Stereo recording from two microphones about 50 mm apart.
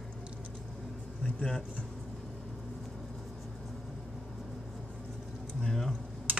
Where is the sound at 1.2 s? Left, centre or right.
Centre.